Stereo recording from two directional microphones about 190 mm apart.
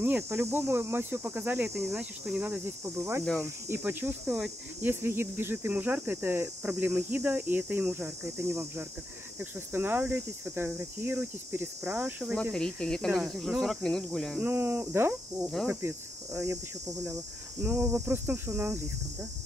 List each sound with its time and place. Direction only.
0.0 s speech: 10° right (ahead or behind)
12.5 s speech: 5° left (ahead or behind)
14.5 s speech: 10° right (ahead or behind)
17.0 s speech: 10° right (ahead or behind)